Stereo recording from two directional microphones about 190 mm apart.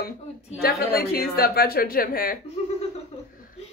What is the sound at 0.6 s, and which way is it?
A woman's voice, 55° left (ahead or behind).